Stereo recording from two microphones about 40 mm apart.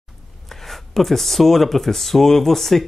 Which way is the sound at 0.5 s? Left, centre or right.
Centre.